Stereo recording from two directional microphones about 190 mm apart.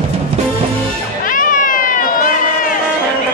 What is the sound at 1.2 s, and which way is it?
Cat, 45° left (ahead or behind).